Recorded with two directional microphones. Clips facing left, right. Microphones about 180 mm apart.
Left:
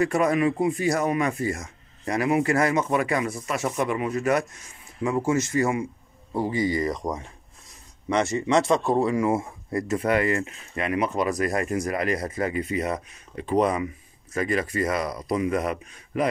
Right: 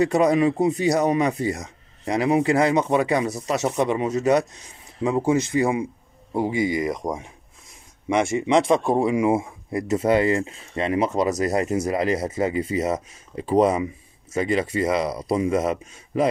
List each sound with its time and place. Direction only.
0.0 s speech: 20° right (ahead or behind)
3.3 s speech: 40° right (ahead or behind)
3.5 s speech: 20° right (ahead or behind)